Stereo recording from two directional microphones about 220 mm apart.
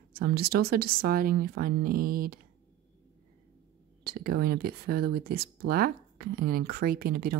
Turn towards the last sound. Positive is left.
turn(degrees=-45)  # may be behind; listen again after turning